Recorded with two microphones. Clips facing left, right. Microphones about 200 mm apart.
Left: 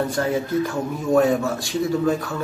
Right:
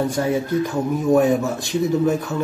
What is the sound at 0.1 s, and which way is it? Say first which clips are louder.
A man's voice: right 1 dB; 15° right (ahead or behind).